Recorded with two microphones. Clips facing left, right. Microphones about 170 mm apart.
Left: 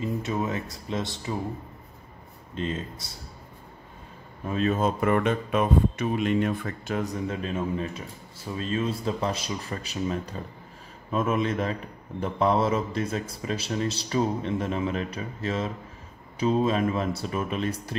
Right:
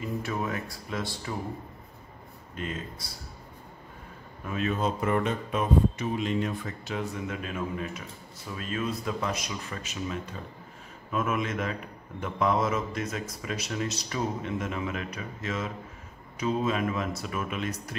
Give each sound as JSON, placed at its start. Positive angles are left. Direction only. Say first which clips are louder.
{"t": 0.0, "sound": "speech", "louder": "left 3 dB", "side_deg": 20}
{"t": 2.5, "sound": "speech", "louder": "left 5 dB", "side_deg": 25}
{"t": 4.5, "sound": "a man's voice", "louder": "left 4 dB", "side_deg": 35}
{"t": 4.7, "sound": "speech", "louder": "left 1 dB", "side_deg": 55}
{"t": 7.0, "sound": "a man's voice", "louder": "left 3 dB", "side_deg": 35}